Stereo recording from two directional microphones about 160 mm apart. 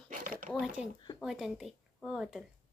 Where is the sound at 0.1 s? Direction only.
55° right (ahead or behind).